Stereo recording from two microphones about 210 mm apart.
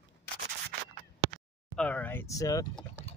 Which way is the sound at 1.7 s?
5° left (ahead or behind).